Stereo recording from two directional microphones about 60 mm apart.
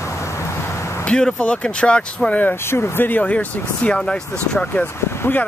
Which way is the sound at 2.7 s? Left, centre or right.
Left.